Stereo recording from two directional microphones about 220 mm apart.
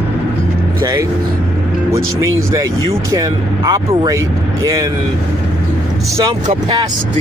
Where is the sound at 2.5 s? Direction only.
15° right (ahead or behind).